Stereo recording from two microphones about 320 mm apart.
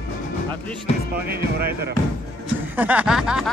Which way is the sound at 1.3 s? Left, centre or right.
Right.